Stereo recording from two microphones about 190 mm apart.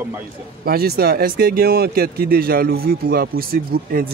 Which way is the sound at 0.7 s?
55° right (ahead or behind).